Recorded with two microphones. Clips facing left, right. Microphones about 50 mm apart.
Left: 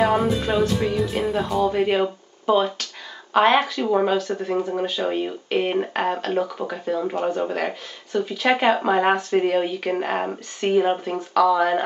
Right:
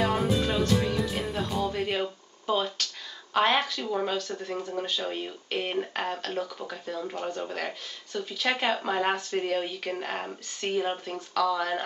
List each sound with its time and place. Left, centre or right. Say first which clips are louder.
0.0 s speech: left 6 dB; centre
3.8 s speech: left 9 dB; left
4.2 s speech: left 9 dB; centre